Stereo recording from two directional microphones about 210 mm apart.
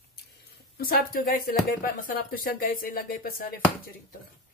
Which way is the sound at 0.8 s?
45° left (ahead or behind).